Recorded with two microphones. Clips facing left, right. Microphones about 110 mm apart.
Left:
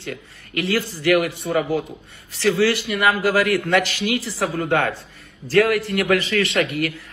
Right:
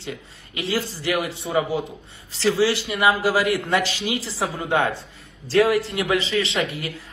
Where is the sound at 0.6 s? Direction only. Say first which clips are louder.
Left 3 dB; 15° right (ahead or behind).